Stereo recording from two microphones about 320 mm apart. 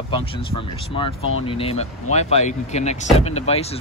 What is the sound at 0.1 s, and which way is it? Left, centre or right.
Speech, centre.